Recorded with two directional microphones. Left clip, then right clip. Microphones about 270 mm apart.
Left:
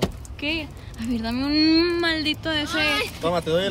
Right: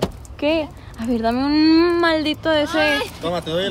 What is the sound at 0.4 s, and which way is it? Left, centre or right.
Speech, centre.